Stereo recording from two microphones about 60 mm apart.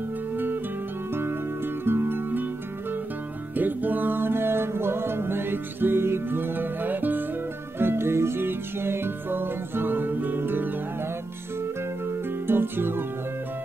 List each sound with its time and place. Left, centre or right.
1.9 s music: right
3.5 s music: right
7.8 s music: right
12.4 s music: right